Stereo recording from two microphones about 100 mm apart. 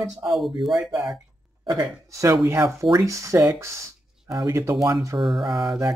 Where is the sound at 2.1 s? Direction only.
30° right (ahead or behind).